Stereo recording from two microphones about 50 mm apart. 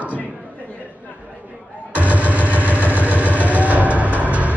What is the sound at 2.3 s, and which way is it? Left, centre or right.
Vehicle, right.